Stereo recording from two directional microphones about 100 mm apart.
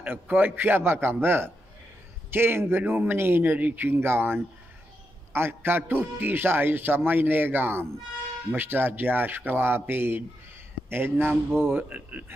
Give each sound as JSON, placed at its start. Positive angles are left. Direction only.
{"t": 0.0, "sound": "speech", "side_deg": -20}